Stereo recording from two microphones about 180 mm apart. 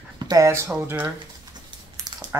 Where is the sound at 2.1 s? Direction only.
20° right (ahead or behind).